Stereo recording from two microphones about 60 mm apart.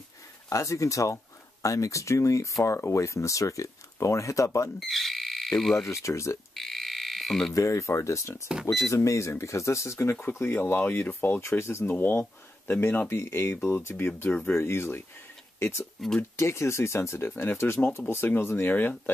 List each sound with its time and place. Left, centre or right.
0.5 s speech: left
4.7 s frog: centre
5.9 s speech: left
6.5 s frog: centre
7.5 s speech: left
10.2 s speech: left
11.9 s speech: left
16.0 s speech: centre
16.3 s speech: left